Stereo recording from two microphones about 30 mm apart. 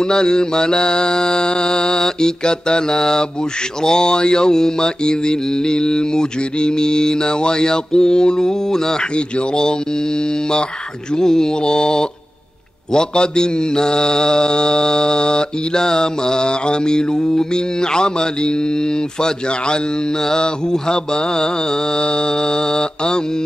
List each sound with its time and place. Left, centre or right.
0.0 s mantra: left
11.1 s mantra: left
20.2 s mantra: left